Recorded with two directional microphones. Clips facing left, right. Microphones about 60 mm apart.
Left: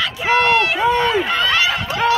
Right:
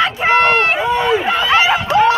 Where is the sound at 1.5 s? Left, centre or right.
Right.